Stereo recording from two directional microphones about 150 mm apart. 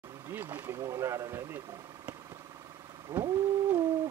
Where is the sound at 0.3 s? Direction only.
15° right (ahead or behind).